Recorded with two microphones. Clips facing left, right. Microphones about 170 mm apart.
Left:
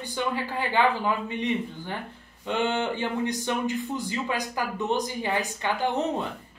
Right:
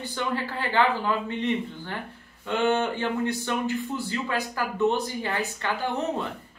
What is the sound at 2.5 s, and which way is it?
Speech, 15° left (ahead or behind).